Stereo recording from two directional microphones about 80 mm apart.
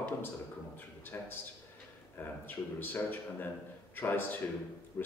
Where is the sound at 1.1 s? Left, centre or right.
Left.